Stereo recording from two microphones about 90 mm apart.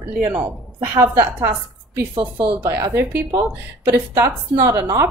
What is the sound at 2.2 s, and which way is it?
Speech, 70° right (ahead or behind).